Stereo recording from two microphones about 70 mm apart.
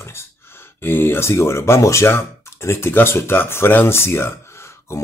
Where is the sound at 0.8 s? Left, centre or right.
Left.